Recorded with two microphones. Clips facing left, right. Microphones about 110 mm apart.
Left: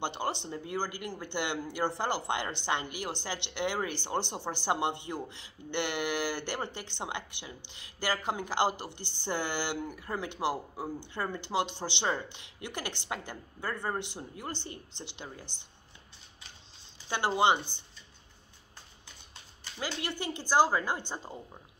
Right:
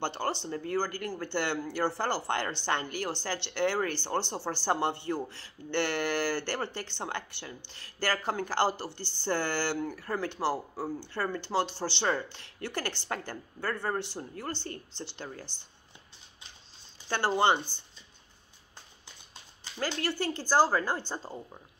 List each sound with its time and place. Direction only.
0.0 s a woman's voice: 15° left (ahead or behind)
17.1 s a woman's voice: 15° left (ahead or behind)
19.8 s a woman's voice: 15° left (ahead or behind)